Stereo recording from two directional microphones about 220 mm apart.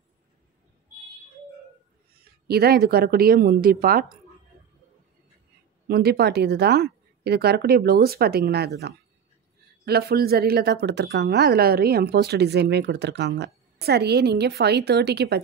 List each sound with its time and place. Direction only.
2.4 s speech: 45° right (ahead or behind)
5.9 s speech: 45° right (ahead or behind)